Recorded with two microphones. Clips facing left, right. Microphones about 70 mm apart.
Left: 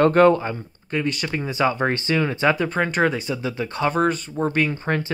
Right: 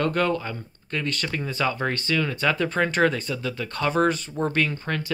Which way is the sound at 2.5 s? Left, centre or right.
Centre.